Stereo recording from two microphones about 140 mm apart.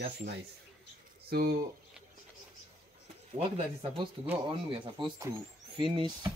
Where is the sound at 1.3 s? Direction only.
90° right.